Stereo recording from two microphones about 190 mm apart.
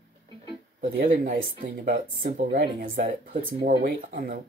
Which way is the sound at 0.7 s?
50° right (ahead or behind).